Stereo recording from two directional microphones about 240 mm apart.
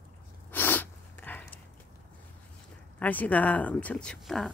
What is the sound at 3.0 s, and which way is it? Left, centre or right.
Speech, centre.